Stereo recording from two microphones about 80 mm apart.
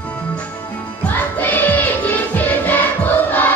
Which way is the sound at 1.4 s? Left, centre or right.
Left.